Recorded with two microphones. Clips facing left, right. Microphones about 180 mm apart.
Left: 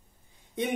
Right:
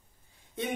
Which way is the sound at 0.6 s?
15° left (ahead or behind).